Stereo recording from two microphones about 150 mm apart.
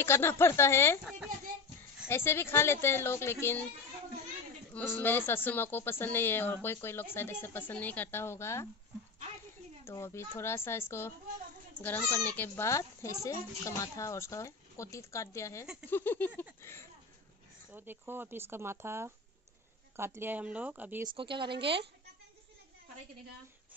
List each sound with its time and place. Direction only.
0.0 s speech: 15° left (ahead or behind)
2.0 s speech: 15° left (ahead or behind)
4.7 s speech: 15° left (ahead or behind)
9.8 s speech: 15° left (ahead or behind)
17.6 s speech: 15° right (ahead or behind)
21.1 s speech: 35° right (ahead or behind)